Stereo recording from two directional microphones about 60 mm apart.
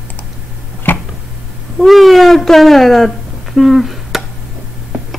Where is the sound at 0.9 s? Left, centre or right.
Left.